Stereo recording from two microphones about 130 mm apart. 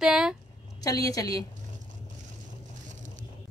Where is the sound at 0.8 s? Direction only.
25° left (ahead or behind).